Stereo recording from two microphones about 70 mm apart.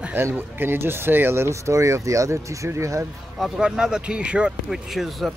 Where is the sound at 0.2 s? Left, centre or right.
Right.